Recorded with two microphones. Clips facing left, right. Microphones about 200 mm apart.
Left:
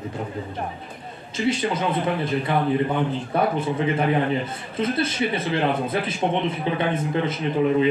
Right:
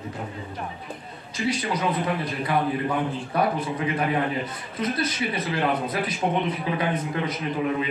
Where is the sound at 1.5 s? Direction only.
25° left (ahead or behind).